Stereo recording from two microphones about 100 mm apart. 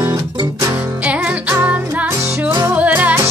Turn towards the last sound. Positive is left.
turn(degrees=-20)  # may be behind; listen again after turning